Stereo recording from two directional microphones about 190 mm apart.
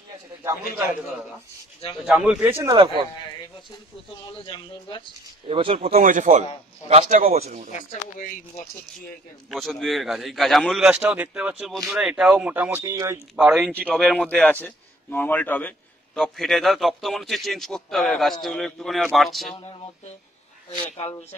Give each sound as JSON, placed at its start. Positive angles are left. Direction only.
{"t": 2.0, "sound": "speech", "side_deg": -5}
{"t": 2.7, "sound": "speech", "side_deg": -25}
{"t": 4.3, "sound": "a man's voice", "side_deg": 25}
{"t": 5.5, "sound": "speech", "side_deg": -30}
{"t": 5.9, "sound": "a man's voice", "side_deg": -45}
{"t": 7.7, "sound": "speech", "side_deg": 45}
{"t": 9.5, "sound": "a man's voice", "side_deg": 0}
{"t": 13.4, "sound": "a man's voice", "side_deg": 0}